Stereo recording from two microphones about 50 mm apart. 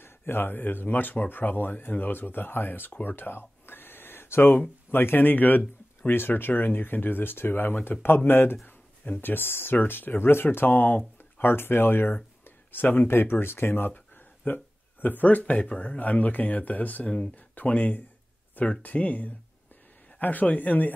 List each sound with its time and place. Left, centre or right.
0.0 s speech: left
2.9 s a sound: left
4.9 s speech: left
14.4 s speech: left